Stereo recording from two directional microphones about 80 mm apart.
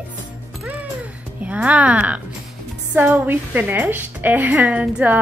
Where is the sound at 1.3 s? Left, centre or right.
Centre.